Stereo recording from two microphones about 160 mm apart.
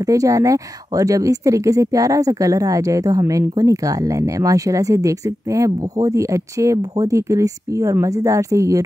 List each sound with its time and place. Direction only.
0.0 s speech: 20° right (ahead or behind)